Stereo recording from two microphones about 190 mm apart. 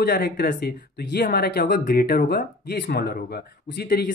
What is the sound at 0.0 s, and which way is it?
Speech, 50° left (ahead or behind).